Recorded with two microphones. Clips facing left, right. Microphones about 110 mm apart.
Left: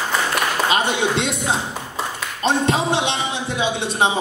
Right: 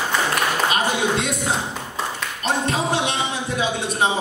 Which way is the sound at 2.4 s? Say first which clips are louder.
Left 4 dB; 25° left (ahead or behind).